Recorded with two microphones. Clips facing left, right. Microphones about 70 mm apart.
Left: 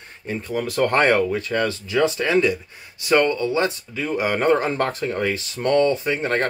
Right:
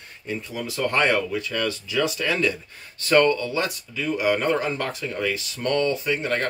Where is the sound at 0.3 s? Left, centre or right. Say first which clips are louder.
Left 5 dB; left.